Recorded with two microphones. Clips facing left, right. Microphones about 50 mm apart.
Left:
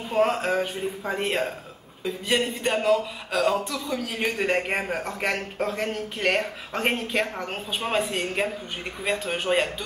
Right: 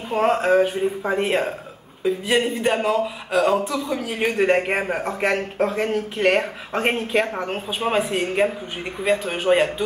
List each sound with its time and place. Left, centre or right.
0.1 s speech: centre